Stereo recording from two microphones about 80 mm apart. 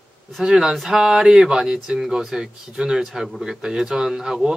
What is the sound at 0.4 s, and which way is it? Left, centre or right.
Speech, centre.